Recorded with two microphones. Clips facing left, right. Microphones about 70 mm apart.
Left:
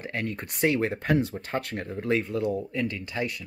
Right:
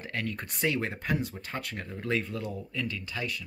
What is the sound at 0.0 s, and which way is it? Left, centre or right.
Speech, left.